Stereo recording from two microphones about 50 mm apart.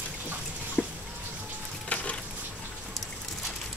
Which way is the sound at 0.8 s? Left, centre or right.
Left.